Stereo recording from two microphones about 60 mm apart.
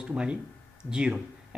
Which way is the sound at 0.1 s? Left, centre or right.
Centre.